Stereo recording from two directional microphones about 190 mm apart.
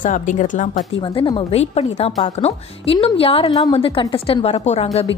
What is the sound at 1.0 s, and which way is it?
A woman's voice, 25° left (ahead or behind).